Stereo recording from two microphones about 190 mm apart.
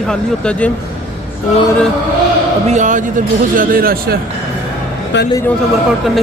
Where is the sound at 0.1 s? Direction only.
5° left (ahead or behind).